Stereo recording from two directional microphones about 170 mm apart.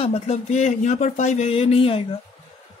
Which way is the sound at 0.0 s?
40° left (ahead or behind).